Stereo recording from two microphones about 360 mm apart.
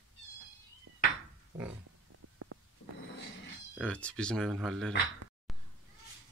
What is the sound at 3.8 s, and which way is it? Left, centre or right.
Speech, centre.